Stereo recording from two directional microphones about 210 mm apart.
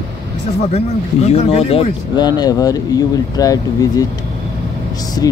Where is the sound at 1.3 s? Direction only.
30° left (ahead or behind).